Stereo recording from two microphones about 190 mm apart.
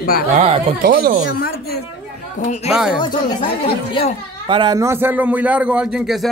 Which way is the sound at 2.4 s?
40° left (ahead or behind).